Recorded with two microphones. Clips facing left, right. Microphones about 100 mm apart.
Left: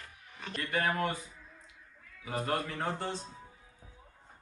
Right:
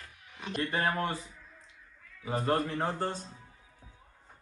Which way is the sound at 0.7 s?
30° right (ahead or behind).